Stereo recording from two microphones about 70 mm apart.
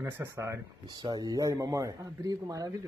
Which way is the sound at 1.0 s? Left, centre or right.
Right.